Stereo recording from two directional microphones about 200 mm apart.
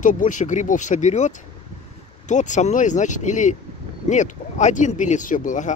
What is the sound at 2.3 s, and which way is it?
Speech, 35° left (ahead or behind).